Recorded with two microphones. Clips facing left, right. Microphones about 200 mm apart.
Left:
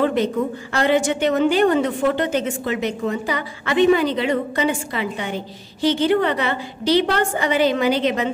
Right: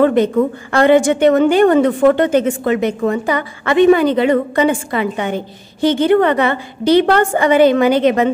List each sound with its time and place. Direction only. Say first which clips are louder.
0.0 s a woman's voice: right 7 dB; 55° right (ahead or behind)